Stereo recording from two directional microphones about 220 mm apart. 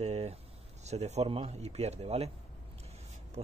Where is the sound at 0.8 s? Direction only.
30° right (ahead or behind).